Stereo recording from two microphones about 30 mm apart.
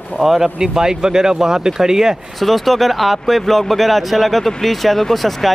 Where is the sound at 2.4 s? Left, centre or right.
Centre.